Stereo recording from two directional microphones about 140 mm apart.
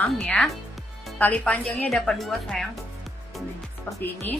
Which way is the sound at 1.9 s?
Centre (ahead or behind).